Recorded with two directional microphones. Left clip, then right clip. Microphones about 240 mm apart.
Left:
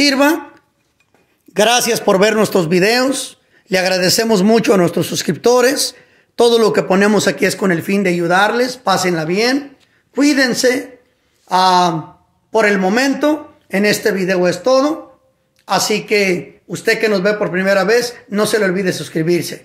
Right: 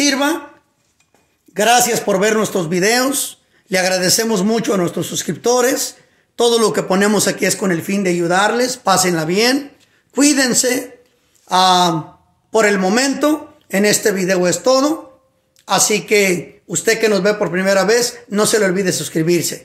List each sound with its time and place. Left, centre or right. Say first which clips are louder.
0.0 s speech: left 3 dB; left
1.5 s a man's voice: even; left; by 19.6 s centre